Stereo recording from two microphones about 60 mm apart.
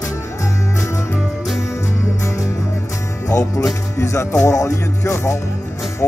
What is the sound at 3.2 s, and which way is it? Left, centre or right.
Music, left.